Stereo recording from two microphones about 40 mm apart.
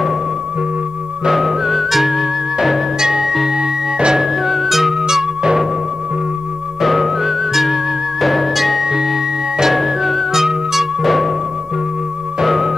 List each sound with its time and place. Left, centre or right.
1.2 s music: centre
5.0 s music: centre
6.8 s music: centre
12.4 s music: centre